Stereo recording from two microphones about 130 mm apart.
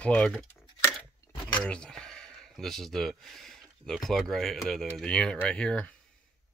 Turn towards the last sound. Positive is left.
turn(degrees=5)  # may be behind; listen again after turning